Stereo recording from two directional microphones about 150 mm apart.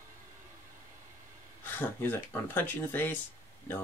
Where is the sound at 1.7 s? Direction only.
15° left (ahead or behind).